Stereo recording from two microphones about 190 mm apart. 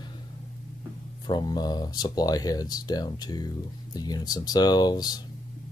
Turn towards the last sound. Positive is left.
turn(degrees=20)  # may be behind; listen again after turning